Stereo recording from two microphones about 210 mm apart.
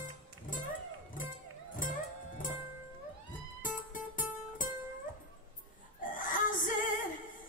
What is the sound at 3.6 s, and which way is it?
Music, 40° left (ahead or behind).